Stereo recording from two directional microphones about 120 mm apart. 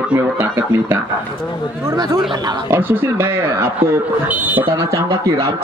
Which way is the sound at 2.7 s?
20° right (ahead or behind).